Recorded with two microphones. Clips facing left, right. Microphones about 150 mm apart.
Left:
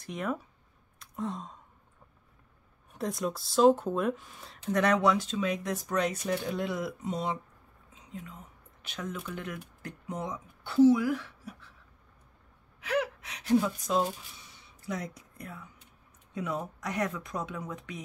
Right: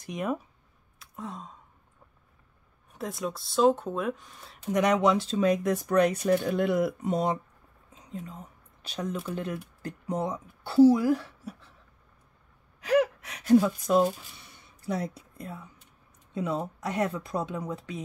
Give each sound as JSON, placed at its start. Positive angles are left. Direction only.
{"t": 0.0, "sound": "speech", "side_deg": -15}
{"t": 0.9, "sound": "gasp", "side_deg": 0}
{"t": 2.9, "sound": "speech", "side_deg": 0}
{"t": 4.6, "sound": "speech", "side_deg": -15}
{"t": 7.9, "sound": "a sound", "side_deg": -35}
{"t": 8.8, "sound": "speech", "side_deg": -35}
{"t": 12.8, "sound": "speech", "side_deg": -40}
{"t": 14.4, "sound": "a sound", "side_deg": -55}
{"t": 14.9, "sound": "speech", "side_deg": -30}